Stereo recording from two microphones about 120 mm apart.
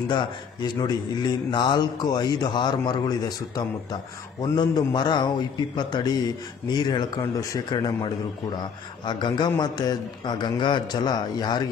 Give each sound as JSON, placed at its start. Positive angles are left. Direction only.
{"t": 0.1, "sound": "a man's voice", "side_deg": 40}